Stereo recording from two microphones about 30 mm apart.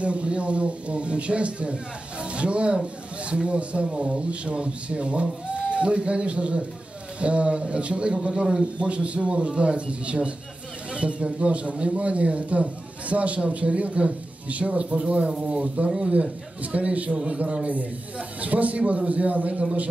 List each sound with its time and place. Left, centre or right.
0.0 s a man's voice: right
16.7 s a man's voice: right
17.1 s speech: right
18.4 s speech: right